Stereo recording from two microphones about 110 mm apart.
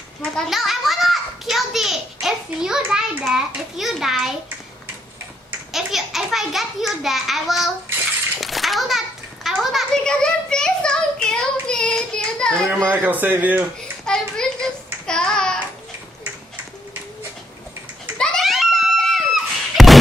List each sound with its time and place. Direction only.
0.4 s a child's voice: centre (ahead or behind)
5.7 s a child's voice: centre (ahead or behind)
8.4 s a sound: centre (ahead or behind)
12.8 s speech: 15° right (ahead or behind)
14.0 s child singing: 5° left (ahead or behind)
18.1 s screaming: 5° left (ahead or behind)